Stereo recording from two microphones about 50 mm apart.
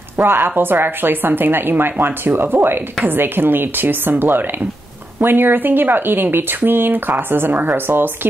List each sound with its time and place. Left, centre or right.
0.2 s speech: right